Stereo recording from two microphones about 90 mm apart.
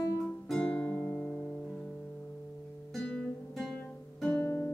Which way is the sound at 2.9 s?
10° left (ahead or behind).